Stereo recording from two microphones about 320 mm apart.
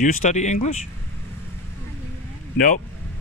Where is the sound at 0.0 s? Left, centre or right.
Left.